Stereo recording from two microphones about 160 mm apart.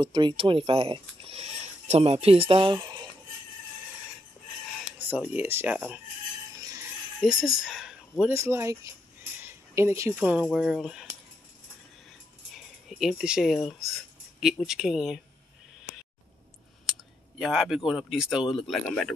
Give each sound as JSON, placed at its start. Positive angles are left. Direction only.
{"t": 0.0, "sound": "speech", "side_deg": -30}
{"t": 4.8, "sound": "speech", "side_deg": -10}
{"t": 7.2, "sound": "speech", "side_deg": 0}
{"t": 8.3, "sound": "speech", "side_deg": -15}
{"t": 12.5, "sound": "speech", "side_deg": 0}
{"t": 16.9, "sound": "speech", "side_deg": 0}